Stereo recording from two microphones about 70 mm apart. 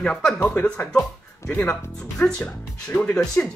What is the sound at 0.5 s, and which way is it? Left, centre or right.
Speech, left.